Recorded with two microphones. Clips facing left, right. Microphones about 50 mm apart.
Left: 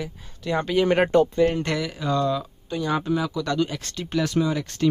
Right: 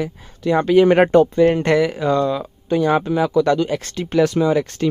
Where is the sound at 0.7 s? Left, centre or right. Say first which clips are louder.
Right 7 dB; right.